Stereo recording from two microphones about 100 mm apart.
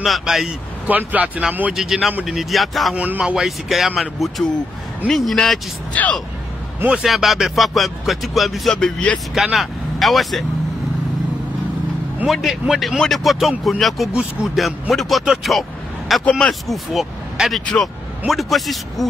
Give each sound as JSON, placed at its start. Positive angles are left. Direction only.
{"t": 0.0, "sound": "speech", "side_deg": 0}
{"t": 0.8, "sound": "speech", "side_deg": -15}
{"t": 1.7, "sound": "speech", "side_deg": -5}
{"t": 3.0, "sound": "speech", "side_deg": -15}
{"t": 7.0, "sound": "speech", "side_deg": 0}
{"t": 9.3, "sound": "speech", "side_deg": 0}
{"t": 12.3, "sound": "speech", "side_deg": 0}